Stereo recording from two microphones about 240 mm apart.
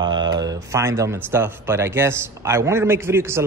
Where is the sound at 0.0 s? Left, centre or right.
Centre.